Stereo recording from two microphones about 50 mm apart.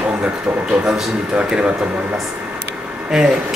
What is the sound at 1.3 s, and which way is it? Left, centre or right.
Speech, centre.